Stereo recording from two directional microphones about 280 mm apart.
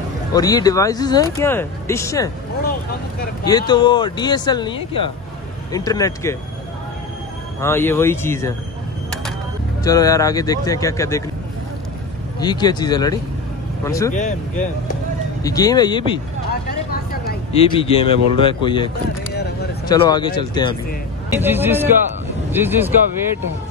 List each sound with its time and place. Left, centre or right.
0.3 s speech: centre
3.4 s speech: centre
7.6 s speech: centre
9.8 s speech: centre
12.4 s speech: centre
14.1 s speech: left
15.4 s speech: centre
17.6 s speech: centre
19.9 s speech: centre
21.3 s speech: centre